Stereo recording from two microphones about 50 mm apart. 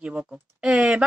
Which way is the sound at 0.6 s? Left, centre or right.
Centre.